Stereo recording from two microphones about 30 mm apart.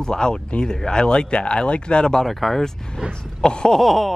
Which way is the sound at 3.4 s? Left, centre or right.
Left.